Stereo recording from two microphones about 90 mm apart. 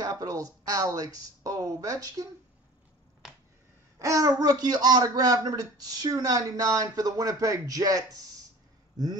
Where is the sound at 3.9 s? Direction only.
35° right (ahead or behind).